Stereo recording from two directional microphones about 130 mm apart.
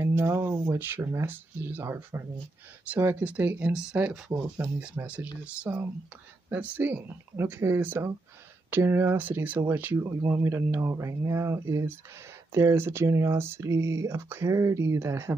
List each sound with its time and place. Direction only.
0.0 s speech: 20° right (ahead or behind)
4.3 s speech: 20° right (ahead or behind)
4.7 s speech: 10° right (ahead or behind)